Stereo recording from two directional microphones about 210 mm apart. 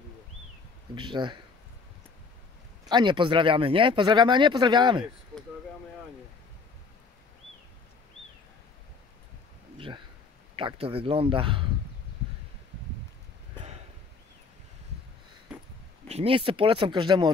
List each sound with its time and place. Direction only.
0.9 s speech: 20° right (ahead or behind)
2.8 s speech: 20° right (ahead or behind)
9.8 s a sound: 25° right (ahead or behind)
10.5 s speech: 25° right (ahead or behind)
16.1 s speech: 25° right (ahead or behind)